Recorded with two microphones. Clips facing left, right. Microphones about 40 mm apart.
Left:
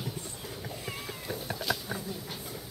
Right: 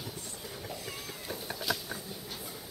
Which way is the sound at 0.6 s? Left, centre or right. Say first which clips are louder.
Left 2 dB; left.